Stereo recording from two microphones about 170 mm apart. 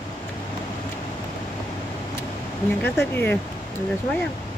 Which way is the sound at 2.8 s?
10° left (ahead or behind).